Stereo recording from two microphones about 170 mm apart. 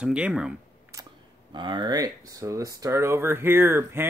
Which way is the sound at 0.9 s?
15° right (ahead or behind).